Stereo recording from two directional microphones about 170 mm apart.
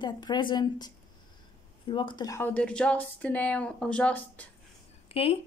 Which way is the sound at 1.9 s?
30° left (ahead or behind).